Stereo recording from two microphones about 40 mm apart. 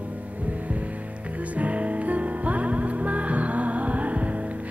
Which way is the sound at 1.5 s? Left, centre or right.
Right.